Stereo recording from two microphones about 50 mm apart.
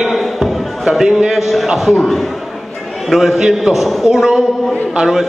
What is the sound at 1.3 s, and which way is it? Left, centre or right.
Speech, centre.